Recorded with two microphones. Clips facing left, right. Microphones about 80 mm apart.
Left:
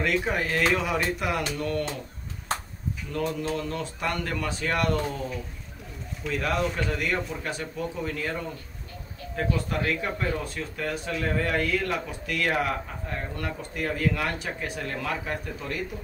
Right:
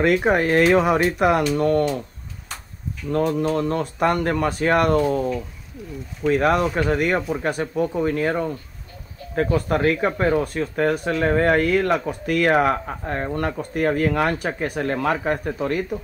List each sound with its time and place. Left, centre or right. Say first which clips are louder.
0.0 s speech: right 8 dB; right
3.1 s speech: right 9 dB; right
6.2 s speech: right 9 dB; right